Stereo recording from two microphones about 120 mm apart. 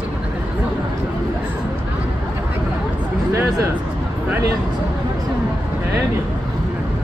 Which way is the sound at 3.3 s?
25° right (ahead or behind).